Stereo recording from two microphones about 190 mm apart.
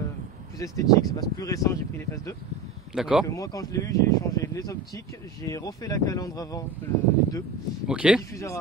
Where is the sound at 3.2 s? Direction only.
15° left (ahead or behind).